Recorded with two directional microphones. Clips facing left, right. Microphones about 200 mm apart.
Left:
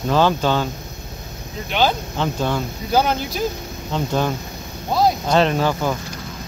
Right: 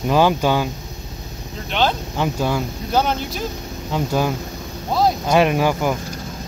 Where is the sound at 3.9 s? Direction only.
10° right (ahead or behind).